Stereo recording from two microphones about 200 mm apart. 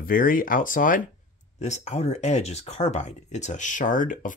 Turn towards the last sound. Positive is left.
turn(degrees=40)  # may be behind; listen again after turning